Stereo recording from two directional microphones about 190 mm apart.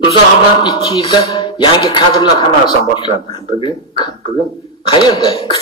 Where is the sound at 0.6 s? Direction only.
25° left (ahead or behind).